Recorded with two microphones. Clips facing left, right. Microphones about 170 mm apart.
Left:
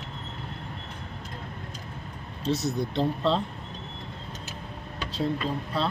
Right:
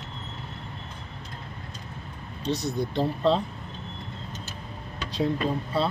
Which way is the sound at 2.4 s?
5° left (ahead or behind).